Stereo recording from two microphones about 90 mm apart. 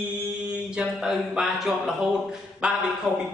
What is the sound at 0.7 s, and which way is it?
Speech, 10° right (ahead or behind).